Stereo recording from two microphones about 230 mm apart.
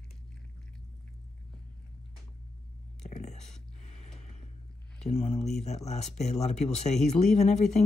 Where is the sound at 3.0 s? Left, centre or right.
Left.